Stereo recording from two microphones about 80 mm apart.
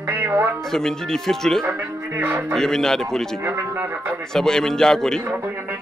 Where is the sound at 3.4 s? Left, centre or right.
Right.